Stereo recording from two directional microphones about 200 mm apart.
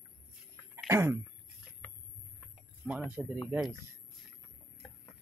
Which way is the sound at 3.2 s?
5° right (ahead or behind).